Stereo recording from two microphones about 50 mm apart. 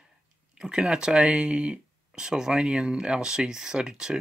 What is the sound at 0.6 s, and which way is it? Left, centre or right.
Speech, centre.